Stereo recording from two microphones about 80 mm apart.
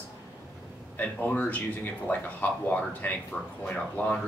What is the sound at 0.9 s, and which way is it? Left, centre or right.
Speech, left.